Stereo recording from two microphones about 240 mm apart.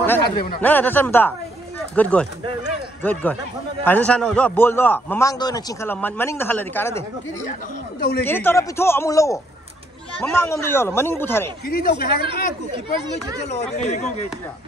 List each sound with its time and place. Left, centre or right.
0.0 s a sound: centre
0.6 s a man's voice: centre
8.3 s a man's voice: centre
11.6 s speech: left
13.6 s speech: left